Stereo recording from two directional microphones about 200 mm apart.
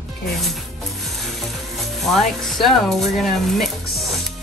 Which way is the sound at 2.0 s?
Centre (ahead or behind).